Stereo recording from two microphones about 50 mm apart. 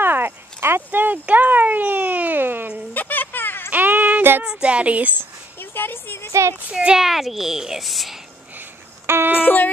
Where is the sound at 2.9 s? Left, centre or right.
Left.